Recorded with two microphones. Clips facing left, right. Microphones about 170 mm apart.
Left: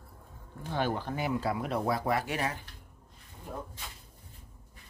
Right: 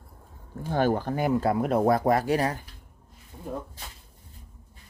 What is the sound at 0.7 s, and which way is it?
Speech, 45° right (ahead or behind).